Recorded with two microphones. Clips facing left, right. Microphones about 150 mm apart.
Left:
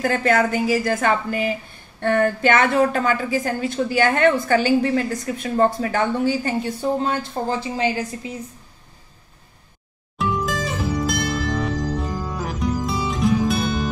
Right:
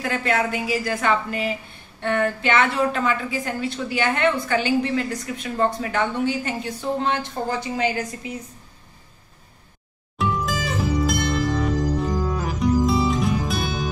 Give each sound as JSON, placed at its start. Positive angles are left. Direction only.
{"t": 0.0, "sound": "a woman's voice", "side_deg": 40}
{"t": 10.1, "sound": "music", "side_deg": 0}